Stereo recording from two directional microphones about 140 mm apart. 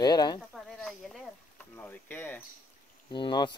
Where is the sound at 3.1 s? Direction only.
35° left (ahead or behind).